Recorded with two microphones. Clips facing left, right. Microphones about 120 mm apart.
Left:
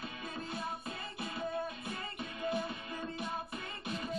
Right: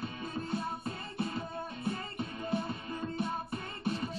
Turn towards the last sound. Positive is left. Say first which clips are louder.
# right 4 dB
turn(degrees=-35)  # may be behind; listen again after turning